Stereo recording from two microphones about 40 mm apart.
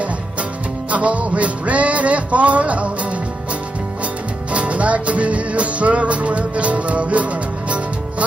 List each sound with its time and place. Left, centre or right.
0.0 s music: right
4.5 s music: right